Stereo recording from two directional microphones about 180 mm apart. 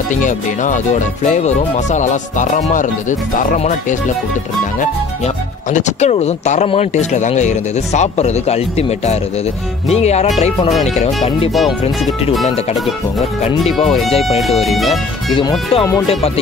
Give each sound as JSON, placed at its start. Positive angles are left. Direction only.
{"t": 0.1, "sound": "speech", "side_deg": 45}
{"t": 13.7, "sound": "speech", "side_deg": 0}
{"t": 15.7, "sound": "music", "side_deg": 20}